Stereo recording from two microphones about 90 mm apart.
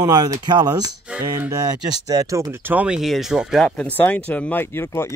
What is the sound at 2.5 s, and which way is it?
Speech, 20° right (ahead or behind).